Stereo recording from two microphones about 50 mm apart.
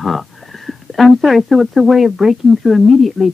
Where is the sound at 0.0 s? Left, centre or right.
Centre.